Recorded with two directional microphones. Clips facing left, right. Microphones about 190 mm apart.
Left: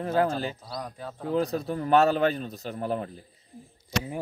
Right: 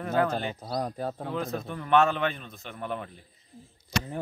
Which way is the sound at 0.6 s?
45° right (ahead or behind).